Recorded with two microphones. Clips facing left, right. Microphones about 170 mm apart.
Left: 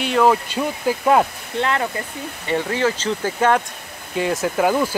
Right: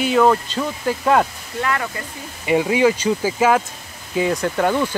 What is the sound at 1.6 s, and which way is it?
Speech, 25° left (ahead or behind).